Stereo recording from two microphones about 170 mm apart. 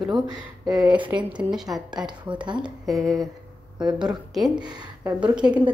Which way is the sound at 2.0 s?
25° right (ahead or behind).